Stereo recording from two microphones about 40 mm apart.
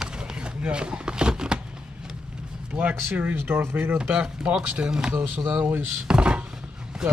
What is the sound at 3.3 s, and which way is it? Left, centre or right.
Speech, right.